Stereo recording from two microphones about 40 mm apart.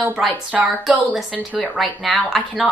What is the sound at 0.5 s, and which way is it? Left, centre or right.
Speech, right.